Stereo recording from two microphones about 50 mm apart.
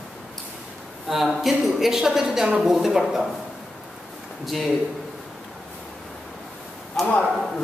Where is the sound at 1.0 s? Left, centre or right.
Centre.